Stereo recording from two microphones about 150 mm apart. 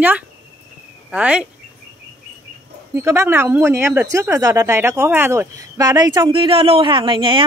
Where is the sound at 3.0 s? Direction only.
15° right (ahead or behind).